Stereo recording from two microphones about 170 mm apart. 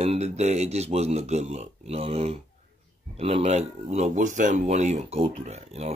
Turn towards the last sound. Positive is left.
turn(degrees=-40)  # may be behind; listen again after turning